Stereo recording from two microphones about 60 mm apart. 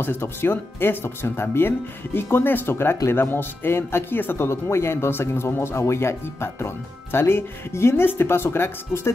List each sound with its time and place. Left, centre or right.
0.0 s speech: left